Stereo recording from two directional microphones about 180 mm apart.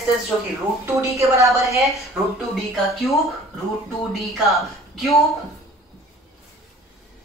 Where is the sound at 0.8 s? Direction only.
15° right (ahead or behind).